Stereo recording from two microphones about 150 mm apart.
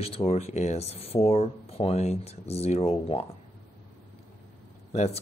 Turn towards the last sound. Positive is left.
turn(degrees=50)  # may be behind; listen again after turning